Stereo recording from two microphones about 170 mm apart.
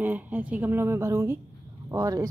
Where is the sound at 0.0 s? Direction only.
10° right (ahead or behind).